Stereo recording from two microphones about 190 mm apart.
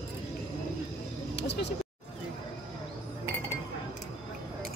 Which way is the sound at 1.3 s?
65° left (ahead or behind).